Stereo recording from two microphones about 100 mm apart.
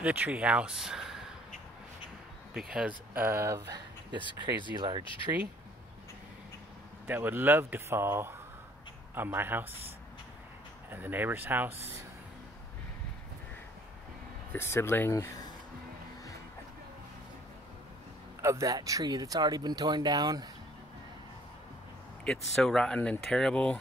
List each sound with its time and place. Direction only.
0.0 s speech: 15° right (ahead or behind)
2.5 s speech: 5° right (ahead or behind)
3.3 s speech: 30° right (ahead or behind)
4.7 s speech: 55° right (ahead or behind)
7.1 s speech: 20° right (ahead or behind)
10.9 s speech: 20° right (ahead or behind)
14.5 s speech: 25° left (ahead or behind)
18.4 s speech: 30° right (ahead or behind)
22.2 s speech: 5° left (ahead or behind)